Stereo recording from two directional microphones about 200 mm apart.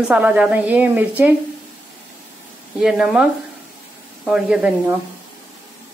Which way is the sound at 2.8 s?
5° right (ahead or behind).